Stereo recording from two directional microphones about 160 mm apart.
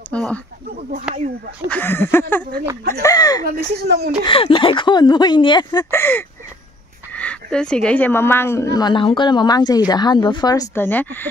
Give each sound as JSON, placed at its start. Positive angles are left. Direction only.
{"t": 0.1, "sound": "speech", "side_deg": 5}
{"t": 1.1, "sound": "speech", "side_deg": -5}
{"t": 1.7, "sound": "a sound", "side_deg": 15}
{"t": 3.0, "sound": "speech", "side_deg": 20}
{"t": 3.4, "sound": "speech", "side_deg": -75}
{"t": 4.2, "sound": "speech", "side_deg": 30}
{"t": 5.9, "sound": "a sound", "side_deg": 15}
{"t": 7.2, "sound": "speech", "side_deg": 5}
{"t": 8.7, "sound": "speech", "side_deg": 30}